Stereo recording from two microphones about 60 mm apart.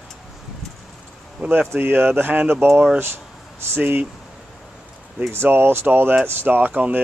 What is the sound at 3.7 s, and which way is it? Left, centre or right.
Speech, right.